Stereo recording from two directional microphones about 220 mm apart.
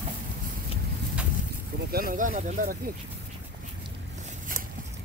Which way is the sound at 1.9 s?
40° right (ahead or behind).